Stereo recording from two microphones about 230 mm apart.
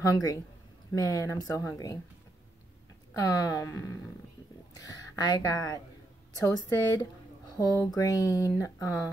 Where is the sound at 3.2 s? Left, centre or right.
Centre.